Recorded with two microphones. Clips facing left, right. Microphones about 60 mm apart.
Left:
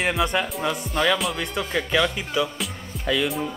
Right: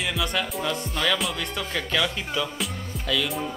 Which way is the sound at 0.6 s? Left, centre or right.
Centre.